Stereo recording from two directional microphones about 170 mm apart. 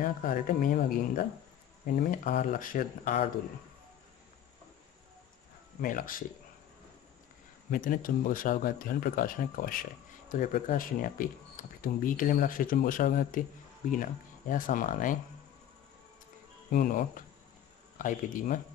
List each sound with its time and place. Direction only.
0.0 s speech: 55° left (ahead or behind)
5.8 s speech: 55° left (ahead or behind)
7.7 s speech: 55° left (ahead or behind)
14.5 s speech: 50° left (ahead or behind)
16.7 s speech: 55° left (ahead or behind)